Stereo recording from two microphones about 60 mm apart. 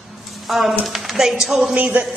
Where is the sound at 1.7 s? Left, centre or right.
Right.